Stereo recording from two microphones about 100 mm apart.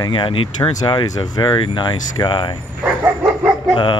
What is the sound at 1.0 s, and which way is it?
Speech, 40° left (ahead or behind).